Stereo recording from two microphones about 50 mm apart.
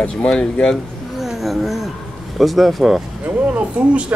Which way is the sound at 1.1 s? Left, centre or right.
Centre.